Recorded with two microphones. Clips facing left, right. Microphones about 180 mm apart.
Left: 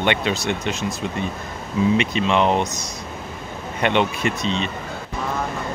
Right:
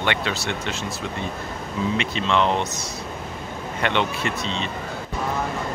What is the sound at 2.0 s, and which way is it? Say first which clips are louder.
Speech: left 3 dB; 15° left (ahead or behind).